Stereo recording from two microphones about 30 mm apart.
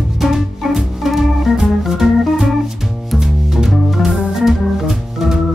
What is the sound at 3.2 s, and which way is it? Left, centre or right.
Music, centre.